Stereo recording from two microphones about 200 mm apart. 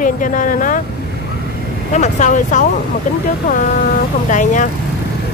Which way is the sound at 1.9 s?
35° left (ahead or behind).